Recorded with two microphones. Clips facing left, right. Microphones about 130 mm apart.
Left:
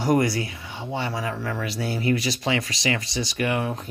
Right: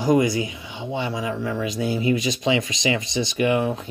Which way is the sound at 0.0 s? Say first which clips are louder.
Right 2 dB; 20° right (ahead or behind).